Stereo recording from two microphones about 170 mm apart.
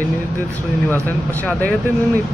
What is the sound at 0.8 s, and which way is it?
Speech, 10° left (ahead or behind).